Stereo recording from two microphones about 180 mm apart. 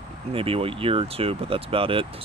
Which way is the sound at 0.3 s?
30° right (ahead or behind).